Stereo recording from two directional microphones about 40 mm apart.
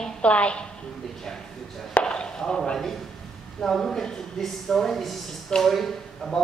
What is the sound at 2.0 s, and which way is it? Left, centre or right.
Chop, left.